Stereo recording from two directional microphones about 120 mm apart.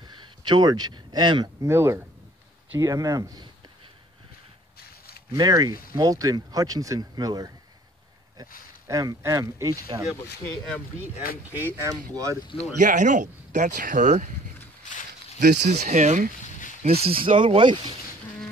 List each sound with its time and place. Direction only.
0.1 s speech: 40° right (ahead or behind)
1.6 s speech: 20° right (ahead or behind)
5.3 s speech: 35° right (ahead or behind)
11.1 s speech: 15° right (ahead or behind)
12.8 s speech: 90° right
15.3 s speech: 80° right
16.8 s speech: 55° right (ahead or behind)